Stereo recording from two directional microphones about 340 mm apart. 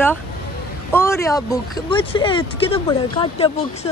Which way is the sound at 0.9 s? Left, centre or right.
Centre.